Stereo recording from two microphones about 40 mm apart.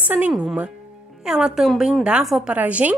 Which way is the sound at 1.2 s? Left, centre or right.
Centre.